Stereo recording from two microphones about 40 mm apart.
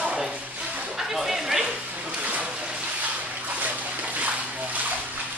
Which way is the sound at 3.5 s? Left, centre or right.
Right.